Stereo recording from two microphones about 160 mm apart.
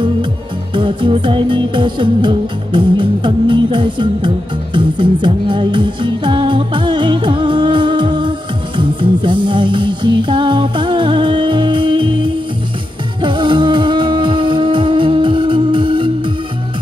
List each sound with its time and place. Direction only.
0.7 s music: 30° right (ahead or behind)